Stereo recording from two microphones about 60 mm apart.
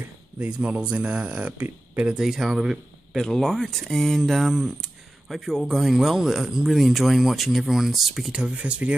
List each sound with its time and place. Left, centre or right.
0.6 s speech: centre
2.1 s speech: centre
3.2 s speech: centre
8.4 s speech: centre